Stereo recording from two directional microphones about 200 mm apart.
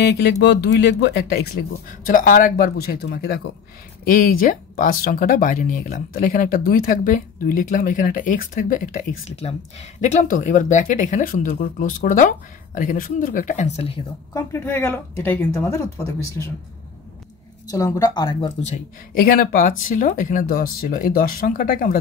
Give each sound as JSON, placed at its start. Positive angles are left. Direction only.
{"t": 0.0, "sound": "speech", "side_deg": 55}
{"t": 14.3, "sound": "speech", "side_deg": 10}
{"t": 17.6, "sound": "speech", "side_deg": 15}
{"t": 19.1, "sound": "speech", "side_deg": 50}